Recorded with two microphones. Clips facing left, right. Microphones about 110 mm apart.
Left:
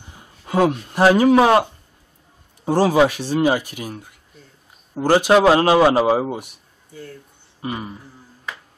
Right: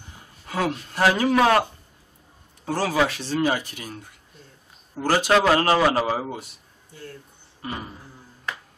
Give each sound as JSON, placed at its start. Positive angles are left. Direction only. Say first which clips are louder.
{"t": 0.5, "sound": "a man's voice", "louder": "left 8 dB", "side_deg": 20}
{"t": 2.6, "sound": "a man's voice", "louder": "left 7 dB", "side_deg": 20}